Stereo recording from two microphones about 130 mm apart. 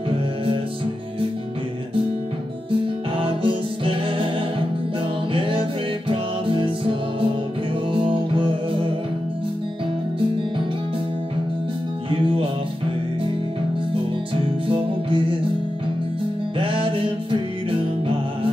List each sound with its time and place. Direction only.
2.7 s music: 40° right (ahead or behind)
5.3 s music: 40° right (ahead or behind)
12.1 s music: 45° right (ahead or behind)
14.7 s music: 40° right (ahead or behind)
16.5 s music: 45° right (ahead or behind)